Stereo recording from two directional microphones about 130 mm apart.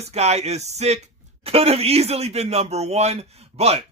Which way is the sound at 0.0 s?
55° right (ahead or behind).